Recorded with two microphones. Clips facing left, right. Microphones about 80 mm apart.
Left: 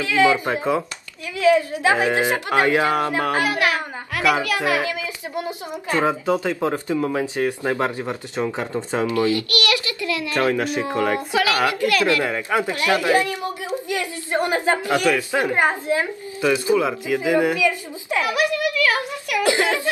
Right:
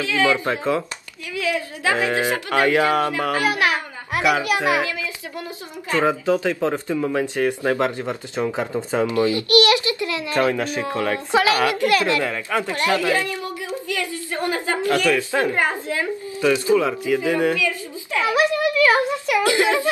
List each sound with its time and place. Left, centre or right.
0.1 s a woman's voice: left
1.3 s a woman's voice: left
3.4 s a child's voice: right
4.8 s a sound: left
6.0 s speech: centre
8.5 s speech: centre
9.0 s a child's voice: right
10.5 s speech: centre
11.3 s a child's voice: right
12.2 s a woman's voice: centre
18.2 s a sound: right